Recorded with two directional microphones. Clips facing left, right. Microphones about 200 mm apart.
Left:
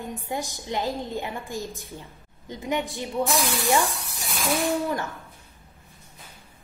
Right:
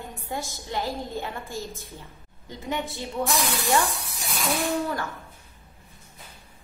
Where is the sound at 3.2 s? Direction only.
Centre (ahead or behind).